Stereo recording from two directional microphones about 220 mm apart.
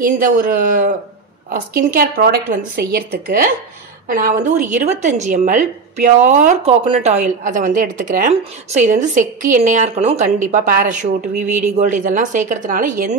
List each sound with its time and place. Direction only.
0.0 s a woman's voice: 40° right (ahead or behind)